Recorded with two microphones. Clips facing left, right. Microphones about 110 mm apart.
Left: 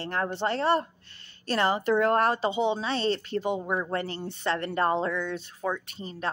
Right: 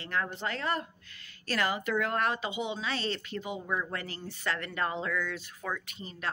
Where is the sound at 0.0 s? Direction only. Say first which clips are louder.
Left 5 dB; 35° left (ahead or behind).